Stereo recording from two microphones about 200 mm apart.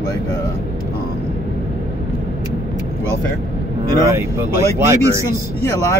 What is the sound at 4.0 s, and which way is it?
Speech, 15° right (ahead or behind).